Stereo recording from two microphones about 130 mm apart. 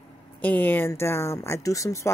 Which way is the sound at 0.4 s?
15° left (ahead or behind).